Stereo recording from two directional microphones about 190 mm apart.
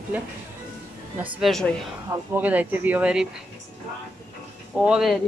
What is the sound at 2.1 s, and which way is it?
Speech, 10° right (ahead or behind).